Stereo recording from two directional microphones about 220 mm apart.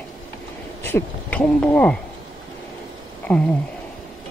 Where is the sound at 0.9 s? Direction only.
5° left (ahead or behind).